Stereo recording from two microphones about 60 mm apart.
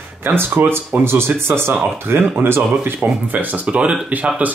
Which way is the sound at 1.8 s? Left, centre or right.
Right.